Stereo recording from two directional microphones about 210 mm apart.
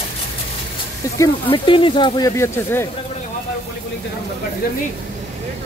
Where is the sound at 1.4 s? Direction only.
25° left (ahead or behind).